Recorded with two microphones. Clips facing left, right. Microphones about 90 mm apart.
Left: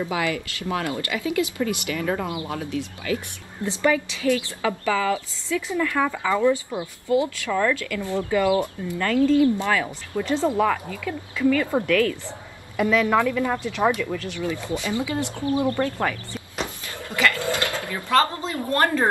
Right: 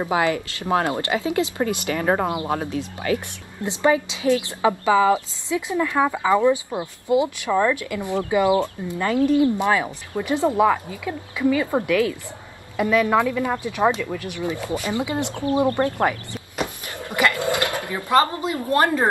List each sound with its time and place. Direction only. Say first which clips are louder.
0.1 s a woman's voice: right 5 dB; 30° right (ahead or behind)
1.9 s speech: right 4 dB; 45° right (ahead or behind)
2.2 s speech: right 5 dB; 35° right (ahead or behind)
3.6 s a woman's voice: right 2 dB; 20° right (ahead or behind)
17.0 s a sound: right 2 dB; 20° right (ahead or behind)